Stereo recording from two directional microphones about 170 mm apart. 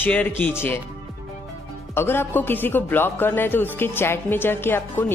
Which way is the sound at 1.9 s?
15° left (ahead or behind).